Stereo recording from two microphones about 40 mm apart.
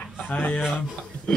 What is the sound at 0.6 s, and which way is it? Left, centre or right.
Speech, centre.